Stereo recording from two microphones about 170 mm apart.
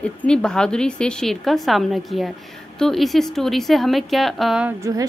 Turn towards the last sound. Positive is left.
turn(degrees=-20)  # may be behind; listen again after turning